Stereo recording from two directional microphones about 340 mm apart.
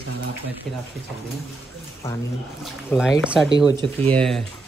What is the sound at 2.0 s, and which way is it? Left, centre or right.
Speech, centre.